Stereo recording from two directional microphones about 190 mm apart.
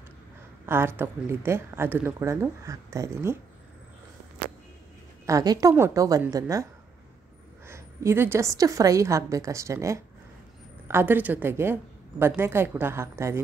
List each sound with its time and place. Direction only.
0.7 s speech: 10° right (ahead or behind)
5.2 s speech: 20° right (ahead or behind)